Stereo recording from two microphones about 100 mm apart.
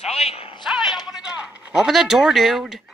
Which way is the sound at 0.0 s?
90° left.